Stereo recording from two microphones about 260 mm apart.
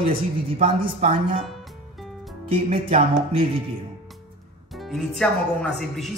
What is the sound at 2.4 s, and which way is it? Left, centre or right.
Music, right.